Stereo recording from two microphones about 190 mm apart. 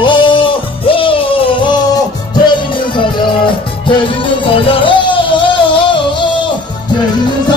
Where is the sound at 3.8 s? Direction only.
25° left (ahead or behind).